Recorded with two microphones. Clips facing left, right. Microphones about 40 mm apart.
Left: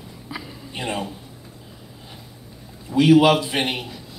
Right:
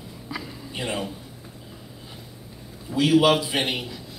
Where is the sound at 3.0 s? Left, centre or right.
Left.